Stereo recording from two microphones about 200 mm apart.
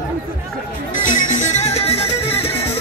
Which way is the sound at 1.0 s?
40° left (ahead or behind).